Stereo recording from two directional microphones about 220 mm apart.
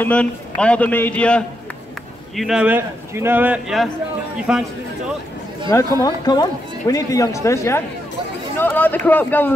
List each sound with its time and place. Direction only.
0.0 s a man's voice: 5° left (ahead or behind)
6.0 s speech: 20° left (ahead or behind)